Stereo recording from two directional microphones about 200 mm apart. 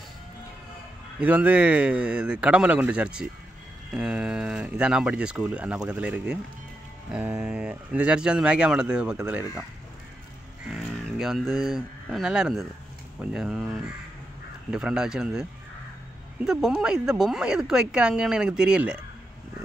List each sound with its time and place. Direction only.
1.2 s speech: 5° right (ahead or behind)
10.7 s speech: centre (ahead or behind)
16.4 s speech: 5° right (ahead or behind)